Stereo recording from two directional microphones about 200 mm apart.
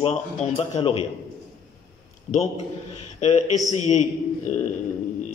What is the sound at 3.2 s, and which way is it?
A man's voice, 35° left (ahead or behind).